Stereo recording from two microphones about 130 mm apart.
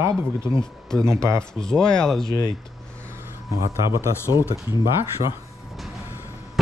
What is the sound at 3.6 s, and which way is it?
Speech, 20° right (ahead or behind).